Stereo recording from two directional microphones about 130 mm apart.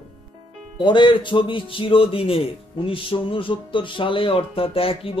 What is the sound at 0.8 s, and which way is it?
A man's voice, 35° left (ahead or behind).